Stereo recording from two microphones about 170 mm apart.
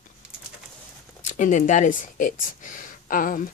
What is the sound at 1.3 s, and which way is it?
Speech, 45° left (ahead or behind).